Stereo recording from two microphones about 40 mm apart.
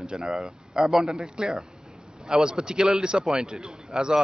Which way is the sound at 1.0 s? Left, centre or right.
Centre.